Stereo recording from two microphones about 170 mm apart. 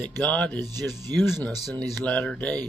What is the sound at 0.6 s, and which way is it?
Speech, 25° right (ahead or behind).